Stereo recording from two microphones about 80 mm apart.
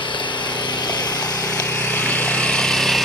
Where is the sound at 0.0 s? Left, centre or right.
Left.